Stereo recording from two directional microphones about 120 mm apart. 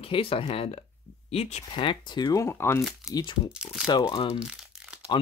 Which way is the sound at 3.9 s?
35° left (ahead or behind).